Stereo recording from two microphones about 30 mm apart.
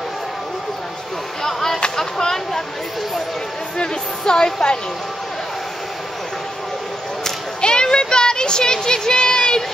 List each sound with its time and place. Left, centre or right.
1.4 s a sound: centre
3.7 s speech: left
7.6 s speech: left